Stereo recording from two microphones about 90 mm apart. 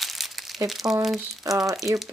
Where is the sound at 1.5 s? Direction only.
40° right (ahead or behind).